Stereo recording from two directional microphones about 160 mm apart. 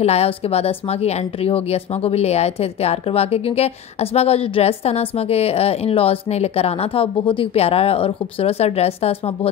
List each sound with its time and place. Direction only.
0.0 s speech: 40° left (ahead or behind)